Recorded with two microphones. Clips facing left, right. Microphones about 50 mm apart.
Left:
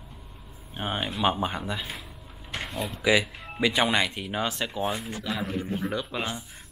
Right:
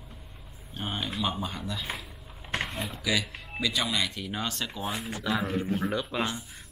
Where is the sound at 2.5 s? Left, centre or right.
Right.